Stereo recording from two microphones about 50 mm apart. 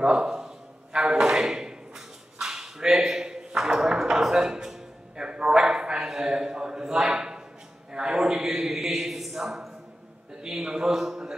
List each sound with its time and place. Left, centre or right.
0.0 s a man's voice: centre
0.9 s a sound: centre
10.4 s a man's voice: centre